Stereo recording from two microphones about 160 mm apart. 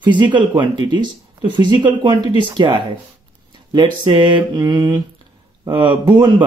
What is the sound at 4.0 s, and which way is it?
Speech, 30° right (ahead or behind).